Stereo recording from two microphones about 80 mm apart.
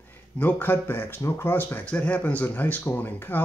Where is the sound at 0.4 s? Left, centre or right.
Left.